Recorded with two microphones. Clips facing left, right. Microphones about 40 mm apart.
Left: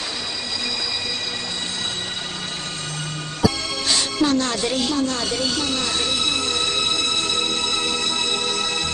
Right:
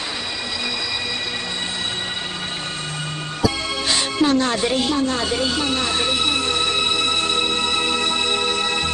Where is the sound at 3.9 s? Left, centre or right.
Centre.